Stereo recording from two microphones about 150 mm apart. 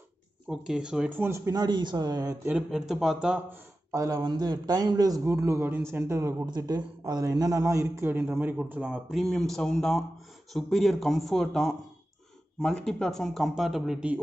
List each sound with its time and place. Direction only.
0.5 s speech: 5° right (ahead or behind); by 2.3 s 25° right (ahead or behind)
2.4 s speech: 5° right (ahead or behind)
3.9 s a man's voice: 20° right (ahead or behind)